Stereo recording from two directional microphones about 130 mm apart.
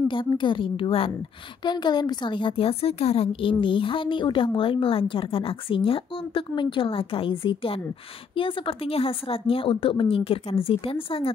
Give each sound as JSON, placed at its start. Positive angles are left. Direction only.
{"t": 0.1, "sound": "a woman's voice", "side_deg": 40}